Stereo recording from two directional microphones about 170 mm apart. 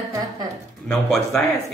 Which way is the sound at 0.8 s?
5° left (ahead or behind).